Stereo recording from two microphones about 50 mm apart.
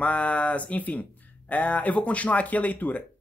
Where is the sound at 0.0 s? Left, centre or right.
Left.